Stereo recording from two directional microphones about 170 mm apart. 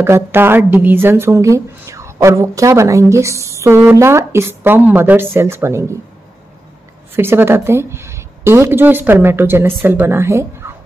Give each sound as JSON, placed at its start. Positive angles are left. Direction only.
{"t": 0.0, "sound": "speech", "side_deg": -15}
{"t": 7.2, "sound": "speech", "side_deg": -15}